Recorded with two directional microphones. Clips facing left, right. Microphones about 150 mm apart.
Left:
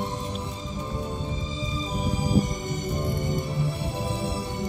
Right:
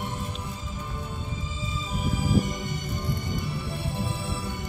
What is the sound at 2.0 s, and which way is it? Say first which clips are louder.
Music: even; 40° left (ahead or behind).